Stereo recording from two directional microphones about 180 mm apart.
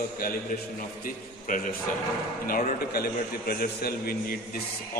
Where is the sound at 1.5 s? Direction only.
45° left (ahead or behind).